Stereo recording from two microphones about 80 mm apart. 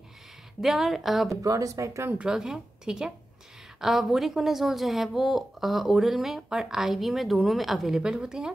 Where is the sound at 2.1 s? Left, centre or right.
Centre.